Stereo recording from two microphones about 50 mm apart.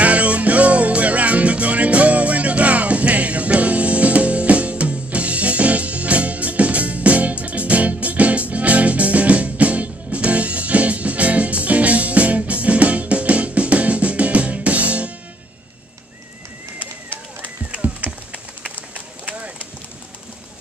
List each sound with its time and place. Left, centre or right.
0.0 s music: right
16.8 s bird: left
18.1 s a sound: right
19.2 s clip-clop: right